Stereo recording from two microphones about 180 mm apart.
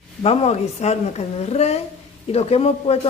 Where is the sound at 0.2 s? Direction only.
35° left (ahead or behind).